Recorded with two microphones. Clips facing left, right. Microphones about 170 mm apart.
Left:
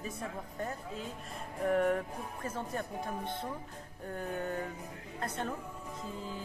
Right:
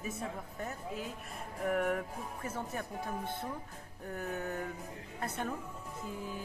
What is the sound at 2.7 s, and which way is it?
Music, 5° right (ahead or behind).